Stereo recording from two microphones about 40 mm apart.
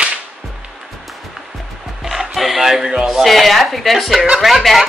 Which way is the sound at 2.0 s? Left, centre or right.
Centre.